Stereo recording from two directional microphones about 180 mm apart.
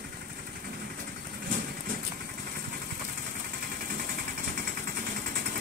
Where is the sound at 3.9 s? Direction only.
50° right (ahead or behind).